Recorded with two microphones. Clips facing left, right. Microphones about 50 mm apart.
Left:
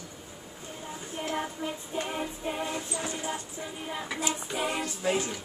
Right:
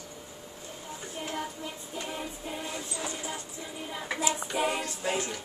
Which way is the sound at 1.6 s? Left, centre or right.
Left.